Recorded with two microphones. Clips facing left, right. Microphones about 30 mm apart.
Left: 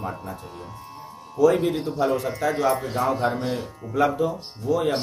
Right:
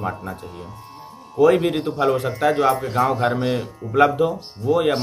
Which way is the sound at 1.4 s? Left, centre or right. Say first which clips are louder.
Right 3 dB; right.